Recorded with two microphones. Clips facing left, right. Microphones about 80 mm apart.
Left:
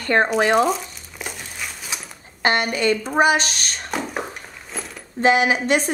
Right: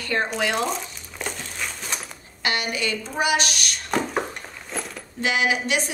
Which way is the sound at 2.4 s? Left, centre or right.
Left.